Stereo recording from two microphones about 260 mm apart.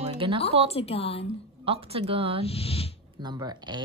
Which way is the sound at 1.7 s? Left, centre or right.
Right.